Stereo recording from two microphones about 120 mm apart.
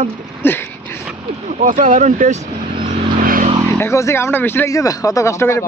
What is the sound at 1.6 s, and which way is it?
Speech, 90° right.